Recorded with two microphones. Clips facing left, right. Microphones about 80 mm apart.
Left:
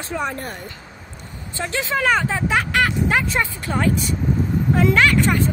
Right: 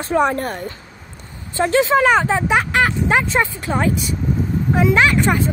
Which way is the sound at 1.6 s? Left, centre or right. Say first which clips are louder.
Right 8 dB; right.